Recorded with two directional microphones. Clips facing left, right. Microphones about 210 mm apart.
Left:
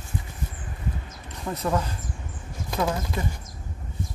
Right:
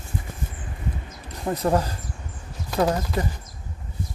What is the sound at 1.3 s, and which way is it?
Speech, 35° right (ahead or behind).